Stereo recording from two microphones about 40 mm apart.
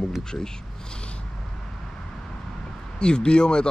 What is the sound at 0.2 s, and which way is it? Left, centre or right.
Speech, centre.